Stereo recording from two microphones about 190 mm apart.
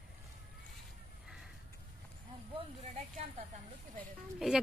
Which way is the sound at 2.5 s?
35° right (ahead or behind).